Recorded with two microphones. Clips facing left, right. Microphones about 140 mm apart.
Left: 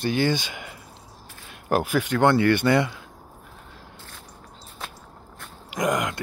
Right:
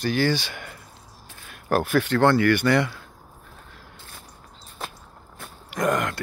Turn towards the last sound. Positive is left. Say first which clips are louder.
# right 1 dB
turn(degrees=15)  # may be behind; listen again after turning